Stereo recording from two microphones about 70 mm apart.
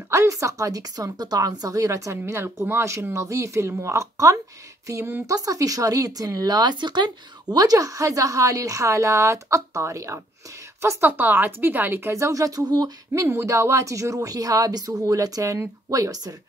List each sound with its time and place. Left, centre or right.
0.1 s speech: right
4.8 s a sound: right
5.2 s speech: right
12.1 s speech: right
13.3 s speech: right